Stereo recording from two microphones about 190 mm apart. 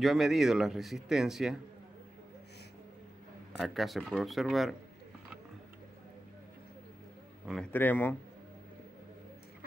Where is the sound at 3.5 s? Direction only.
Centre (ahead or behind).